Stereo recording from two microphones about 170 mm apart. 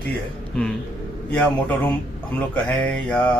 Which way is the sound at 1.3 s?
10° left (ahead or behind).